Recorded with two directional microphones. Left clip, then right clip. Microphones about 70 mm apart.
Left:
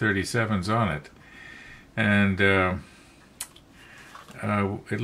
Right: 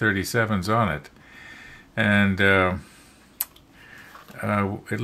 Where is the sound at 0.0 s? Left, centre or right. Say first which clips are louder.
Right 3 dB; right.